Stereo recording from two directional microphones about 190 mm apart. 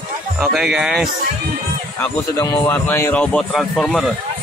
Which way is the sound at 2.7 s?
10° left (ahead or behind).